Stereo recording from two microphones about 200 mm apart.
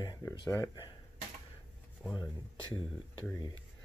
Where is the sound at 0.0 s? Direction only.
20° left (ahead or behind).